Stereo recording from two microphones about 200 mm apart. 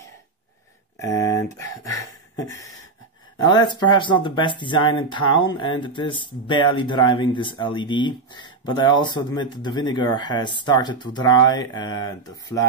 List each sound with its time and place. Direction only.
0.9 s speech: 15° left (ahead or behind)
3.3 s speech: 20° left (ahead or behind)